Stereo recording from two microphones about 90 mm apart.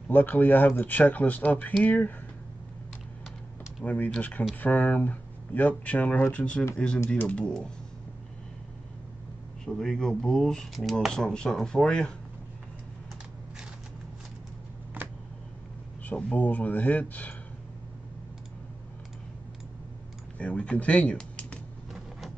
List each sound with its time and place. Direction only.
0.1 s speech: 20° left (ahead or behind)
3.8 s speech: 20° left (ahead or behind)
9.7 s speech: 5° left (ahead or behind)
15.0 s a sound: 20° right (ahead or behind)
16.0 s speech: 15° left (ahead or behind)
20.3 s speech: 10° left (ahead or behind)